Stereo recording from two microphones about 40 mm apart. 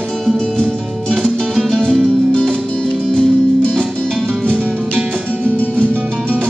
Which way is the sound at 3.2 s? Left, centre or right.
Left.